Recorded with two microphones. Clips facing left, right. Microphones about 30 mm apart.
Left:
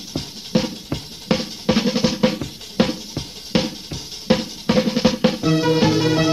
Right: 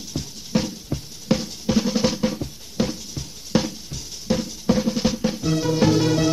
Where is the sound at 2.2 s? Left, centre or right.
Left.